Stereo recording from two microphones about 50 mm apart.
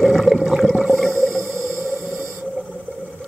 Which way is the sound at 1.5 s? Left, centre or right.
Right.